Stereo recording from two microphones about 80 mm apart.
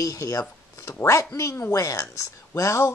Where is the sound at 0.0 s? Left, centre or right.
Left.